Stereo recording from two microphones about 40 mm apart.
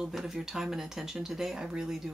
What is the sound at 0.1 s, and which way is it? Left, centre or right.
Speech, centre.